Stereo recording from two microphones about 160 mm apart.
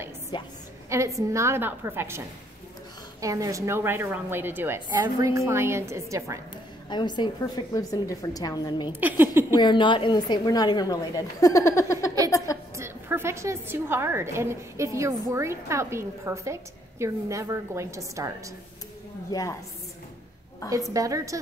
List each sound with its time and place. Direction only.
0.3 s a woman's voice: 25° left (ahead or behind)
0.8 s a woman's voice: 20° right (ahead or behind)
6.9 s a woman's voice: 30° left (ahead or behind)
9.0 s a woman's voice: 10° right (ahead or behind)
9.5 s a woman's voice: 30° left (ahead or behind)
12.3 s a sound: 20° left (ahead or behind)
12.7 s a woman's voice: 15° right (ahead or behind)
19.3 s a woman's voice: 20° left (ahead or behind)
20.7 s a woman's voice: 20° right (ahead or behind)